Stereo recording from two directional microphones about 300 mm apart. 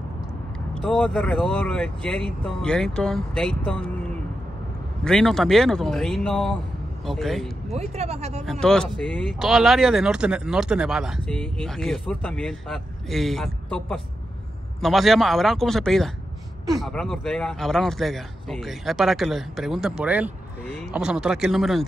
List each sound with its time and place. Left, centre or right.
0.7 s speech: centre
5.0 s speech: centre
7.7 s speech: right
8.5 s speech: centre